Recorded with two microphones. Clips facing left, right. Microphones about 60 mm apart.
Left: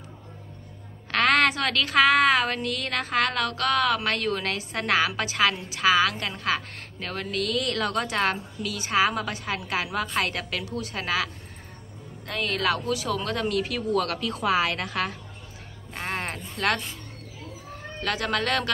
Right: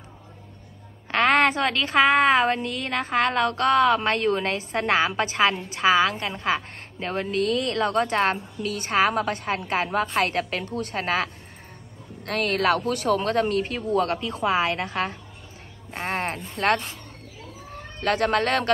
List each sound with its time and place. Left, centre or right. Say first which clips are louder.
1.1 s a woman's voice: right 2 dB; right
12.3 s speech: right 4 dB; right